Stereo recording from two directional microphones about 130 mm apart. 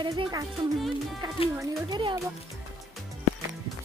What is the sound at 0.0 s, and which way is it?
Speech, 35° right (ahead or behind).